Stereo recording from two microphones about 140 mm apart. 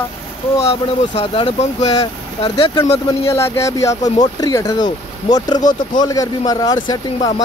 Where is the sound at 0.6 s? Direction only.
45° left (ahead or behind).